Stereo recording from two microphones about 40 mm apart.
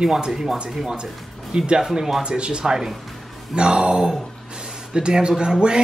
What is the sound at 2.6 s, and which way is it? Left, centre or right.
Speech, centre.